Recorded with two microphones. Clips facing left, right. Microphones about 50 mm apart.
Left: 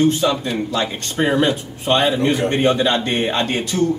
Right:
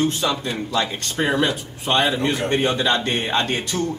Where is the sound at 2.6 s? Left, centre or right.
Left.